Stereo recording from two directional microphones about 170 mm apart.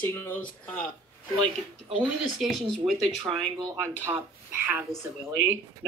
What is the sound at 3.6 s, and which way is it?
Speech, 20° right (ahead or behind).